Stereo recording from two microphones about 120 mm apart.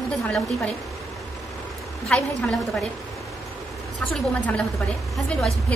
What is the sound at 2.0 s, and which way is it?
Speech, 10° left (ahead or behind).